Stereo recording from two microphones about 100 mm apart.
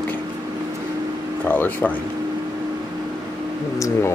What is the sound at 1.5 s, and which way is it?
Speech, 20° left (ahead or behind).